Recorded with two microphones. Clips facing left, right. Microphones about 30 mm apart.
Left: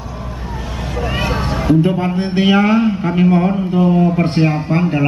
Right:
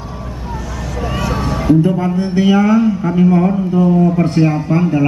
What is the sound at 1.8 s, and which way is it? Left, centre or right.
A man's voice, left.